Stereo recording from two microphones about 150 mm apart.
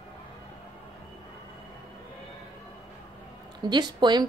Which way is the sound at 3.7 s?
30° right (ahead or behind).